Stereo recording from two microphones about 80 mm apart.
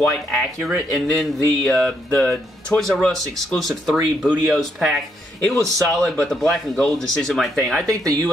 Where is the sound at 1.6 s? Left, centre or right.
Centre.